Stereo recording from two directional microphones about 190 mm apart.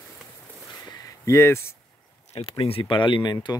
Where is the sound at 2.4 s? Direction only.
30° left (ahead or behind).